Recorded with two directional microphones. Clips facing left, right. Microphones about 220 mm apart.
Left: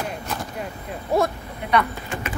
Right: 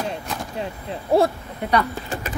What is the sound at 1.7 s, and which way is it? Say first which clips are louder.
Speech: even; 35° right (ahead or behind).